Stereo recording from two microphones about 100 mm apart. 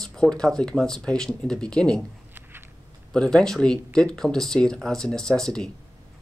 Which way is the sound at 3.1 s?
5° left (ahead or behind).